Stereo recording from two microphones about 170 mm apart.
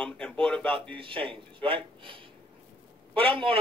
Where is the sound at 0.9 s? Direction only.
30° right (ahead or behind).